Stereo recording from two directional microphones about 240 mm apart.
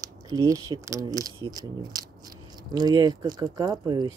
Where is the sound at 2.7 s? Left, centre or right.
Centre.